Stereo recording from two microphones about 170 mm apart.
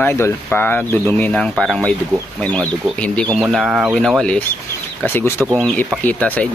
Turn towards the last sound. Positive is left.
turn(degrees=10)  # may be behind; listen again after turning